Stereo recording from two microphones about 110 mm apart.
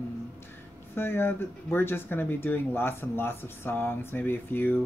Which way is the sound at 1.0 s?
20° left (ahead or behind).